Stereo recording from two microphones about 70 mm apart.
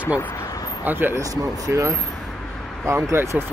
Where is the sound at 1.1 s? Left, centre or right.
Right.